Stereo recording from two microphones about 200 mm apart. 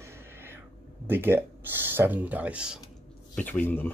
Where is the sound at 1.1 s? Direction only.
10° right (ahead or behind).